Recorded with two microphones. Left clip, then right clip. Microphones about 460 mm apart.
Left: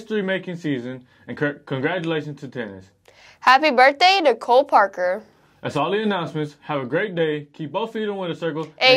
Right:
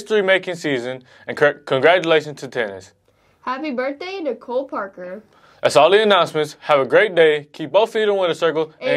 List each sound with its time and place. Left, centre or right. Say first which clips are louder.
0.1 s speech: right 8 dB; right
3.4 s speech: left 10 dB; left
5.6 s speech: right 10 dB; right